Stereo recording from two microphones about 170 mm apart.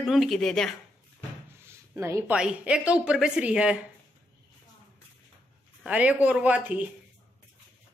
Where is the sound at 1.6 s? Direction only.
15° right (ahead or behind).